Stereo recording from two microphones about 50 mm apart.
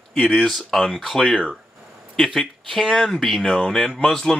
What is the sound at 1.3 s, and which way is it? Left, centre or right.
Speech, centre.